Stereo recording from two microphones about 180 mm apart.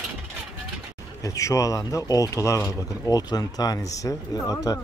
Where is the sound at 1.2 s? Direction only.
15° left (ahead or behind).